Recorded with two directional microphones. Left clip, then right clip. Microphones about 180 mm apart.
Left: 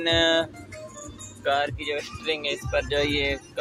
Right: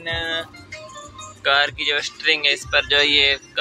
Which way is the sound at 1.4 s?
10° left (ahead or behind).